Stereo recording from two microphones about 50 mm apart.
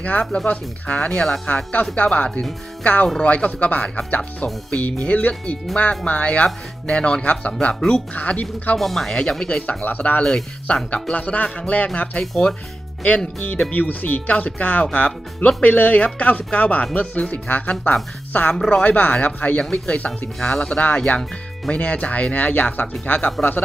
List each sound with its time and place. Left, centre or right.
0.5 s speech: left
1.2 s speech: centre
2.0 s speech: left
8.7 s speech: centre
9.1 s speech: centre; by 10.2 s left
10.2 s speech: centre
11.1 s speech: left
12.2 s speech: centre
13.4 s speech: left
20.3 s speech: centre
20.6 s speech: left